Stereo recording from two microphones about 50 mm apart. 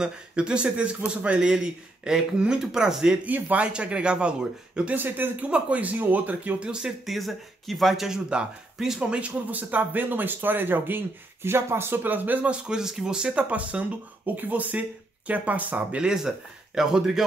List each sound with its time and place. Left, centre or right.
0.0 s speech: right
3.3 s speech: right
3.6 s speech: right
4.9 s speech: right
6.6 s speech: centre
7.1 s speech: centre
8.3 s speech: centre
9.1 s speech: right
12.0 s speech: right
12.4 s speech: centre; by 16.0 s right
16.2 s speech: centre